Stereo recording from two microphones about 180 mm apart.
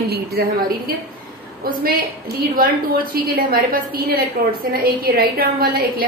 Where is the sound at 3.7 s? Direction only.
55° right (ahead or behind).